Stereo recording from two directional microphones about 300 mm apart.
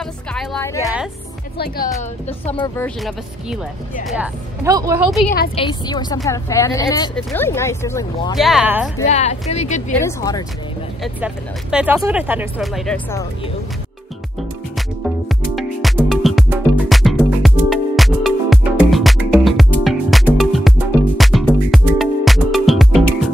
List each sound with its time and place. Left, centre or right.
0.3 s music: centre
1.6 s speech: left
2.5 s speech: centre
4.1 s a woman's voice: centre
5.6 s a woman's voice: centre
8.4 s speech: centre
9.0 s speech: left
9.9 s a woman's voice: centre
11.1 s speech: centre
15.0 s music: centre